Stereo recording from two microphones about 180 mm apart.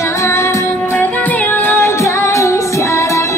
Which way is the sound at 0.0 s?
15° left (ahead or behind).